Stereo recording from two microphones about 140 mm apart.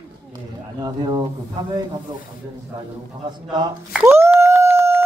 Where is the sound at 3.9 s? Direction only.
20° right (ahead or behind).